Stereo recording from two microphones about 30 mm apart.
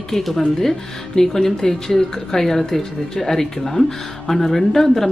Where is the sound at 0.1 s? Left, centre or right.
Centre.